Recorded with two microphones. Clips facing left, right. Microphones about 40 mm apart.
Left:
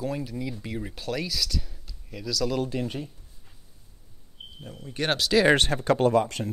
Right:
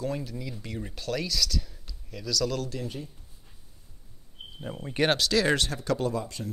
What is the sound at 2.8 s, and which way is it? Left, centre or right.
Speech, left.